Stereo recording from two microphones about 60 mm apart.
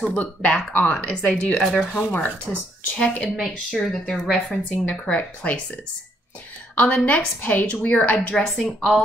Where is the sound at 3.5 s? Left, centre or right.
Centre.